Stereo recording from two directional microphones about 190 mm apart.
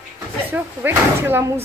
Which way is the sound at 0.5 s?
10° right (ahead or behind).